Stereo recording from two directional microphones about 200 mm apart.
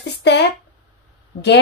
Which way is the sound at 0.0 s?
60° left (ahead or behind).